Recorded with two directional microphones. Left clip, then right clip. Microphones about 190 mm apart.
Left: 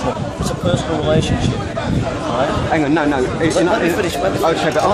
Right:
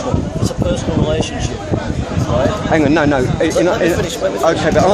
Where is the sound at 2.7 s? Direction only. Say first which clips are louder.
Right 5 dB; 50° right (ahead or behind).